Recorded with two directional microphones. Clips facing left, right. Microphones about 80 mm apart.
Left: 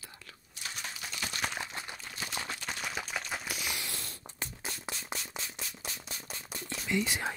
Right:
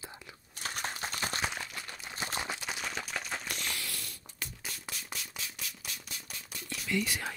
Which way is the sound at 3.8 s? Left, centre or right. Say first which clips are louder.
Left 1 dB; left.